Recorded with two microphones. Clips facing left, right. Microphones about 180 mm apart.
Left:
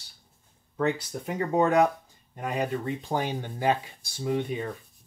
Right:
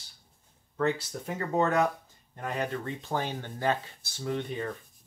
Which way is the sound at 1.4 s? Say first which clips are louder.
Left 4 dB; 15° left (ahead or behind).